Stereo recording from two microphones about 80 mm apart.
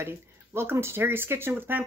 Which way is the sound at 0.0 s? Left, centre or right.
Right.